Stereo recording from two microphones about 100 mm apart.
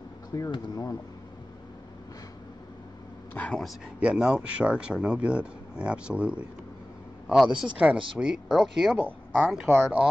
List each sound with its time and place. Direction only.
0.3 s speech: 40° left (ahead or behind)
3.3 s speech: 10° left (ahead or behind)
4.0 s a man's voice: 10° right (ahead or behind)